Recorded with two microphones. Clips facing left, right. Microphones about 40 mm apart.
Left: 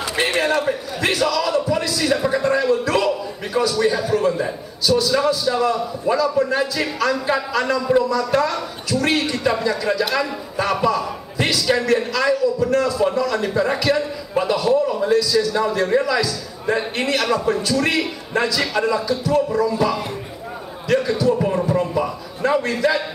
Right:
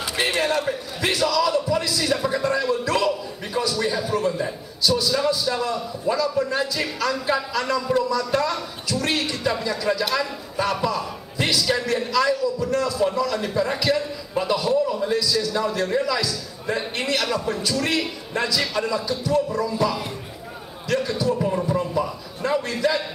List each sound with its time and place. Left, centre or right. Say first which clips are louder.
0.1 s a man's voice: left 3 dB; centre
21.3 s music: left 4 dB; centre
21.6 s a man's voice: left 3 dB; centre